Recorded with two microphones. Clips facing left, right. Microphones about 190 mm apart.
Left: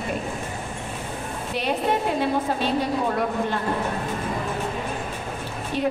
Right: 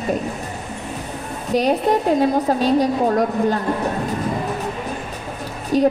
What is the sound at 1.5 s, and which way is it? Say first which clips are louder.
A woman's voice: right 7 dB; 40° right (ahead or behind).